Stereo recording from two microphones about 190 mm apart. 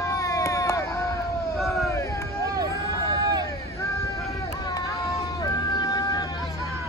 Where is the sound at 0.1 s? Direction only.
15° left (ahead or behind).